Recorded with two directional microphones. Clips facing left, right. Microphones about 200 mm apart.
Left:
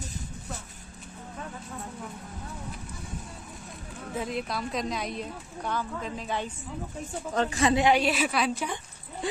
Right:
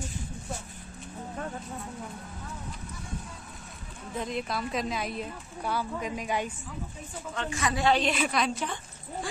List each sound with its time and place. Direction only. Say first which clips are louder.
4.2 s a woman's voice: even; centre (ahead or behind)
7.3 s a woman's voice: left 7 dB; 35° left (ahead or behind)
7.8 s a woman's voice: left 2 dB; 10° left (ahead or behind)
9.2 s a sound: left 7 dB; 20° left (ahead or behind)